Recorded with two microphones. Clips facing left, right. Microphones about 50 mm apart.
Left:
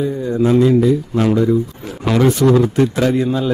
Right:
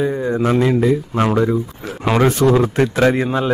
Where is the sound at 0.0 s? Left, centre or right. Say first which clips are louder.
Left 1 dB; right.